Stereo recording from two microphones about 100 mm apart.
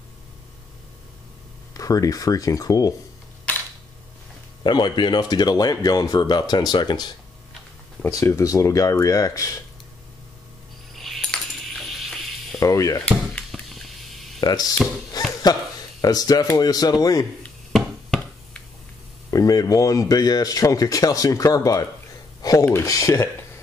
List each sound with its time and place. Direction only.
1.7 s speech: 35° left (ahead or behind)
4.6 s speech: 45° left (ahead or behind)
8.3 s speech: 30° left (ahead or behind)
11.0 s coin: centre (ahead or behind)
12.5 s speech: 35° left (ahead or behind)
13.5 s a sound: centre (ahead or behind)
14.4 s speech: 40° left (ahead or behind)
15.2 s a sound: 40° left (ahead or behind)
16.0 s speech: 40° left (ahead or behind)
17.7 s a sound: centre (ahead or behind)
19.3 s speech: 35° left (ahead or behind)